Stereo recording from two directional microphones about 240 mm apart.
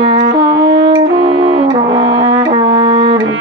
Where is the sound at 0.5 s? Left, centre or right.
Right.